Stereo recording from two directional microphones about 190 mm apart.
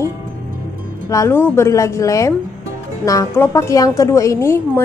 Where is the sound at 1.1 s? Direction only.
15° left (ahead or behind).